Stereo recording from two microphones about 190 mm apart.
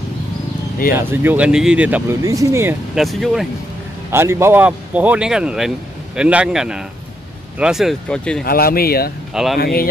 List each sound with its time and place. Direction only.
0.9 s speech: 10° right (ahead or behind)
2.9 s speech: centre (ahead or behind)
4.1 s speech: 15° right (ahead or behind); by 8.5 s 5° left (ahead or behind)
8.5 s speech: 50° left (ahead or behind)
9.3 s speech: centre (ahead or behind)
9.6 s speech: 55° left (ahead or behind)